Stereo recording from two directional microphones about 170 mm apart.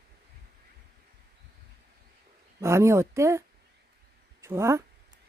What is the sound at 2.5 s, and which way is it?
Speech, 15° right (ahead or behind).